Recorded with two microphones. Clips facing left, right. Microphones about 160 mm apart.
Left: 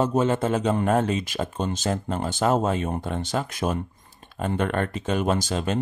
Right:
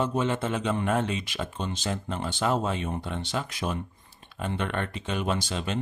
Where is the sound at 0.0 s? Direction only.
40° left (ahead or behind).